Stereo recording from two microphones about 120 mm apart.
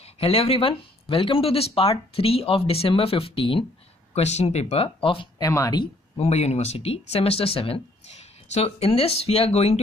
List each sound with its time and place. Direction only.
0.0 s speech: 55° left (ahead or behind)
4.1 s speech: 65° left (ahead or behind); by 5.3 s 45° left (ahead or behind)
5.4 s speech: 30° left (ahead or behind)
6.1 s speech: 65° left (ahead or behind)